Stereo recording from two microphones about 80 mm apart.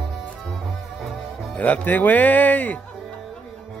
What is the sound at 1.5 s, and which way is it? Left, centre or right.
Speech, centre.